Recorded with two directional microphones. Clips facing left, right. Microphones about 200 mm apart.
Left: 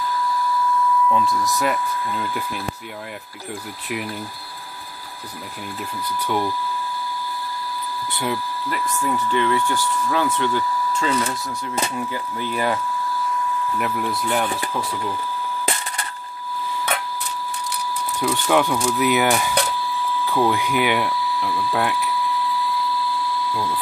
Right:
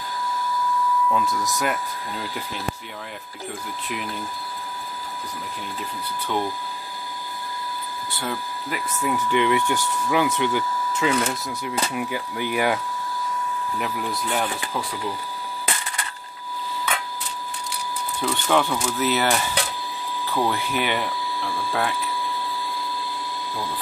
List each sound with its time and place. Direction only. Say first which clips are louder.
1.4 s speech: left 3 dB; centre (ahead or behind)
8.6 s speech: left 2 dB; 5° right (ahead or behind)
9.3 s speech: right 1 dB; 15° right (ahead or behind)
13.7 s speech: left 2 dB; 5° left (ahead or behind)
18.2 s speech: left 2 dB; 10° left (ahead or behind)
20.4 s speech: left 5 dB; 15° left (ahead or behind)
22.4 s a sound: left 6 dB; 50° right (ahead or behind)